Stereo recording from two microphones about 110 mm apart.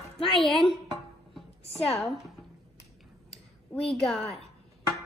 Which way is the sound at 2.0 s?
Centre (ahead or behind).